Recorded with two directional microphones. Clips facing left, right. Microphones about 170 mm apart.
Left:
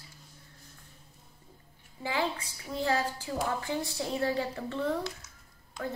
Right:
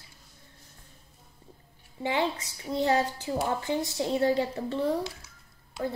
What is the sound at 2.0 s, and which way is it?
A woman's voice, 25° right (ahead or behind).